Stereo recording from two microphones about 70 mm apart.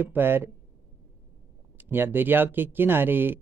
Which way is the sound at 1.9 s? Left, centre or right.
Right.